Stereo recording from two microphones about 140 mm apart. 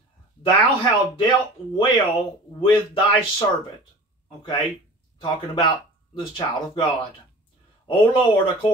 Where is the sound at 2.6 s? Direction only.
40° left (ahead or behind).